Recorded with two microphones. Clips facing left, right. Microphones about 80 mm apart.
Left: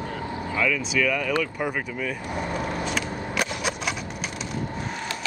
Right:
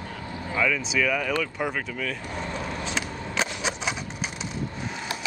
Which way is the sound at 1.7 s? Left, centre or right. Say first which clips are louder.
Left 1 dB; centre.